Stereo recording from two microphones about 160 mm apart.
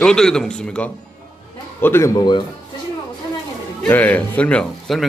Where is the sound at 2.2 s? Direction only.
30° left (ahead or behind).